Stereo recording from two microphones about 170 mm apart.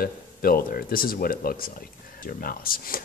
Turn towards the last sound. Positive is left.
turn(degrees=60)  # may be behind; listen again after turning